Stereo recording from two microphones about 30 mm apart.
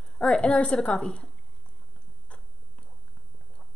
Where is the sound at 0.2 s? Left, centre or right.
Left.